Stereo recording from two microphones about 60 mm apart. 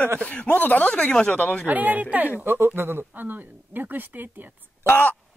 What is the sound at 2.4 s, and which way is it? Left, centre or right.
Speech, right.